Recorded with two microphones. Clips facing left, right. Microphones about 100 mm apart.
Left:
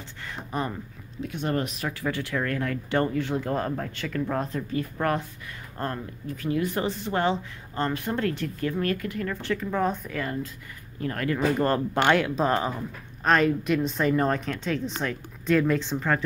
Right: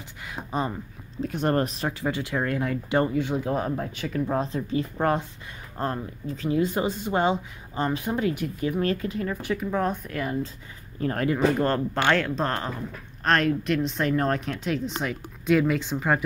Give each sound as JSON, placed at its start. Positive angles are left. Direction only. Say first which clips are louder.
{"t": 0.2, "sound": "a sound", "louder": "right 2 dB", "side_deg": -15}
{"t": 1.2, "sound": "speech", "louder": "right 4 dB", "side_deg": -45}
{"t": 2.0, "sound": "speech", "louder": "even", "side_deg": -20}
{"t": 9.8, "sound": "speech", "louder": "left 2 dB", "side_deg": 0}
{"t": 11.0, "sound": "speech", "louder": "right 4 dB", "side_deg": -30}
{"t": 11.6, "sound": "speech", "louder": "left 1 dB", "side_deg": 10}